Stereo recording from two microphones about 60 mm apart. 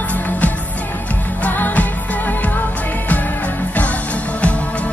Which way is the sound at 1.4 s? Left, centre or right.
Left.